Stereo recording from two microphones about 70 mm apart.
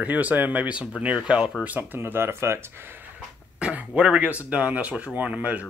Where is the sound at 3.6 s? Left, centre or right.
Centre.